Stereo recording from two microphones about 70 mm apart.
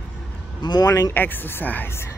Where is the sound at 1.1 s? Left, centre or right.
Left.